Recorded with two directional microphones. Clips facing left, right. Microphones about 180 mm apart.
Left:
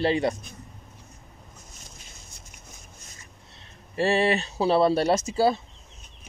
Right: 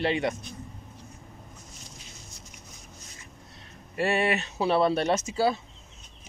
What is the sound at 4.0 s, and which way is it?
Speech, 30° left (ahead or behind).